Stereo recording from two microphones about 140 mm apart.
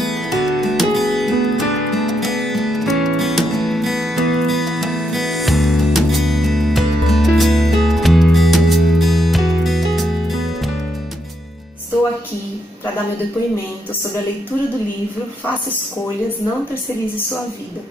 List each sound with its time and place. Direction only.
0.0 s music: centre (ahead or behind)